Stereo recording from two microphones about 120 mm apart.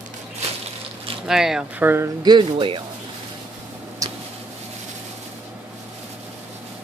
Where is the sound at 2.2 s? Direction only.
40° right (ahead or behind).